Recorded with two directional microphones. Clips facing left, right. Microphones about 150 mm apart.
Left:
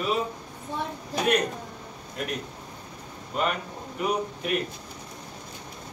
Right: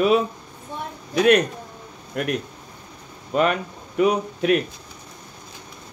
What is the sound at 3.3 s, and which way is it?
A man's voice, 90° right.